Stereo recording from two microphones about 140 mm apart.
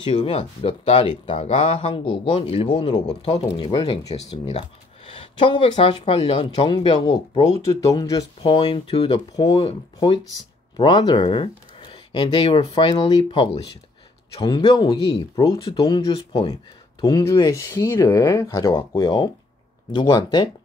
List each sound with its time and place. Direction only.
0.0 s a man's voice: 40° left (ahead or behind)
4.1 s speech: 40° left (ahead or behind)
7.1 s speech: 25° left (ahead or behind)
18.9 s speech: 30° left (ahead or behind)